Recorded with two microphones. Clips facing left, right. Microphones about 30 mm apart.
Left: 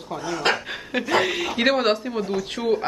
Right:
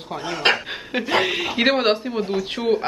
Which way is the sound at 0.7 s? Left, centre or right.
Centre.